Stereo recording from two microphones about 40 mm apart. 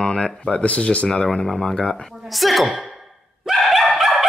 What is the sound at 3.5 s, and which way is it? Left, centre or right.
Dog, centre.